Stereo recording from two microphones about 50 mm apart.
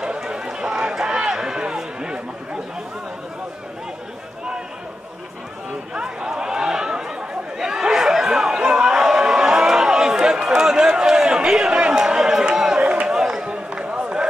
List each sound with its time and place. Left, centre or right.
0.0 s run: centre
5.9 s a sound: centre
13.5 s run: right